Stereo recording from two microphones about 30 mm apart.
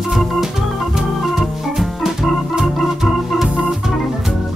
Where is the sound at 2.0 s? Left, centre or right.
Centre.